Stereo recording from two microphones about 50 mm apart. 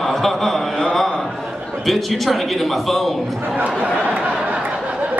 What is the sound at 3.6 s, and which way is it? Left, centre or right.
Speech, right.